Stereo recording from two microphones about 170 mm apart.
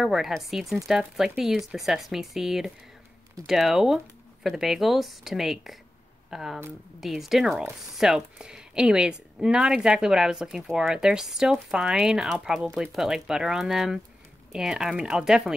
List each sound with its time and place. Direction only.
0.0 s speech: centre (ahead or behind)